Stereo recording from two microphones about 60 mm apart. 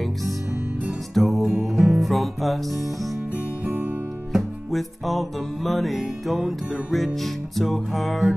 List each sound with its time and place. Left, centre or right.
1.1 s music: centre
3.6 s music: right
4.3 s music: centre